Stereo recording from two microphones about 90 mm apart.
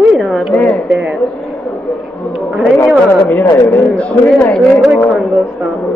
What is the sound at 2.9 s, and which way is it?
Speech, 15° left (ahead or behind).